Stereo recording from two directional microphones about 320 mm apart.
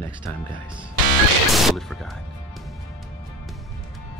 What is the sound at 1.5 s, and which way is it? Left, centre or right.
Speech, centre.